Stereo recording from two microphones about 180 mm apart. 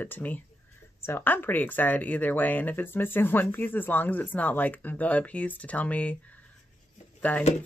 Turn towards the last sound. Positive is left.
turn(degrees=10)  # may be behind; listen again after turning